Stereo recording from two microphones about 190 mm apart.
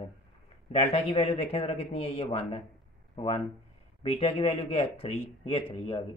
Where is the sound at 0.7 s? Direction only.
35° left (ahead or behind).